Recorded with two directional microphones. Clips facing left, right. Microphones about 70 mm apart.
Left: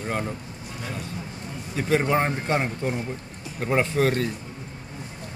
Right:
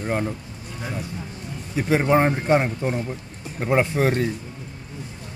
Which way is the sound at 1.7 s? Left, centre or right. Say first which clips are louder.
Right 3 dB; centre.